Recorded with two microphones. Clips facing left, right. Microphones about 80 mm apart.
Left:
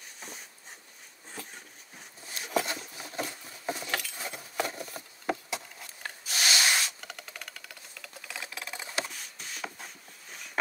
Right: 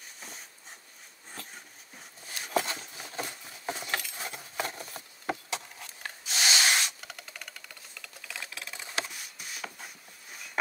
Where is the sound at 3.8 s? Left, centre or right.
Centre.